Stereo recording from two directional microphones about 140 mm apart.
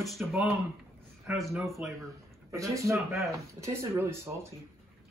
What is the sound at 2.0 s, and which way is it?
Speech, 20° right (ahead or behind).